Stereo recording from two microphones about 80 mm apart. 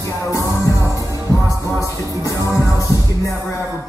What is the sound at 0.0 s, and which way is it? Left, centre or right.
Music, left.